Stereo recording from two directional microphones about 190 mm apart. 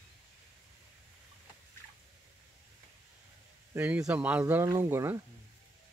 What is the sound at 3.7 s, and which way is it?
Speech, 10° right (ahead or behind).